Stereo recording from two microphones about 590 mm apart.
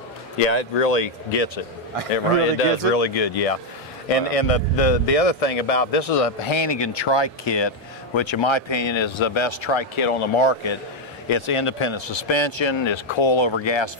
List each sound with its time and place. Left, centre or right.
0.4 s speech: left